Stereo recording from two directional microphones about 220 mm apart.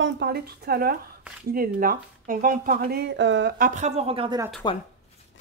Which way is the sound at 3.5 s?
35° right (ahead or behind).